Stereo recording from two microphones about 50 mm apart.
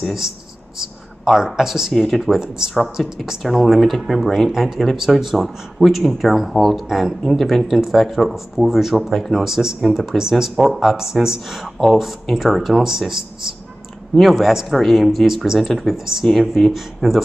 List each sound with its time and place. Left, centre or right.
0.7 s speech: centre
2.0 s speech: centre
2.4 s speech: centre
3.3 s speech: centre